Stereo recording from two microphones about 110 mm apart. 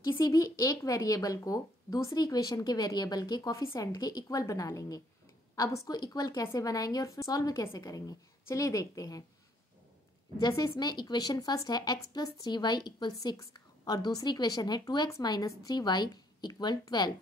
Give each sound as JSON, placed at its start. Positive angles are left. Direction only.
{"t": 0.1, "sound": "speech", "side_deg": 30}
{"t": 10.4, "sound": "speech", "side_deg": 40}